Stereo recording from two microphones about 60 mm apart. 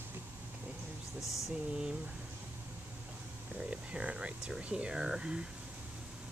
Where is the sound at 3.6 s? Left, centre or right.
Centre.